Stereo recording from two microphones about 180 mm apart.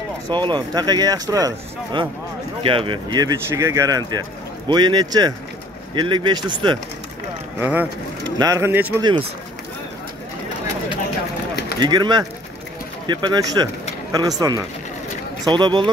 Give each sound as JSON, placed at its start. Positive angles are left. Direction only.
{"t": 0.3, "sound": "speech", "side_deg": -25}
{"t": 7.6, "sound": "speech", "side_deg": -10}
{"t": 11.8, "sound": "speech", "side_deg": -25}